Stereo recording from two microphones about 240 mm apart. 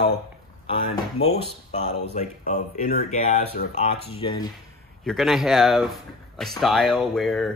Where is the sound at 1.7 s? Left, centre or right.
Left.